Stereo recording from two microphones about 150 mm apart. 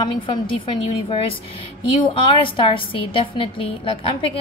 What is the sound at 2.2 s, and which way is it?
A woman's voice, 35° left (ahead or behind).